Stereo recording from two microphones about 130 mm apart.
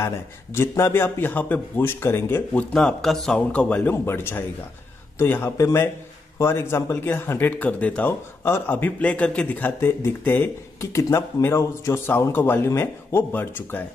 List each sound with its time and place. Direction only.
0.6 s speech: 20° left (ahead or behind)
2.7 s speech: 5° left (ahead or behind)